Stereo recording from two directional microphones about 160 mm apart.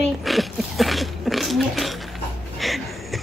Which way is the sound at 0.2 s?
Centre (ahead or behind).